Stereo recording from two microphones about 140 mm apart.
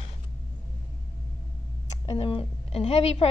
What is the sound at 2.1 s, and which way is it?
A woman's voice, 40° left (ahead or behind).